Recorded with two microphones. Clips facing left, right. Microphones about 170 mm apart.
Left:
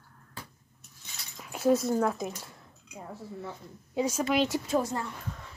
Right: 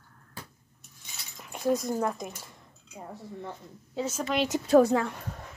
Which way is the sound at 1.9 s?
Centre (ahead or behind).